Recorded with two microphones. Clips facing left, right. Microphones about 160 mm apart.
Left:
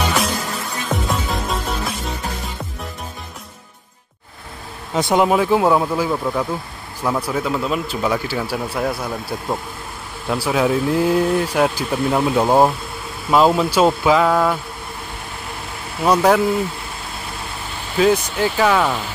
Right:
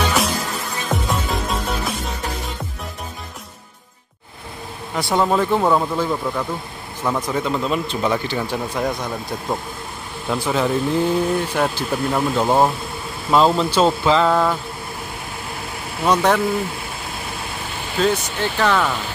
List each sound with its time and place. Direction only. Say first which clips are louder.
0.0 s music: even; centre (ahead or behind)
4.9 s speech: left 3 dB; 20° left (ahead or behind)
16.0 s speech: left 2 dB; 5° left (ahead or behind)
17.9 s speech: left 4 dB; 5° left (ahead or behind)